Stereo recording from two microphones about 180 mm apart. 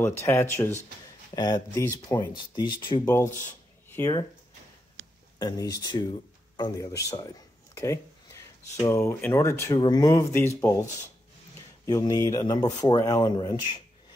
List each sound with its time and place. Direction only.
0.0 s speech: 15° left (ahead or behind)
5.4 s speech: 20° left (ahead or behind)